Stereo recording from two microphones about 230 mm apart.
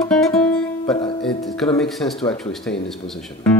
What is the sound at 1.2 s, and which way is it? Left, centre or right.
Speech, centre.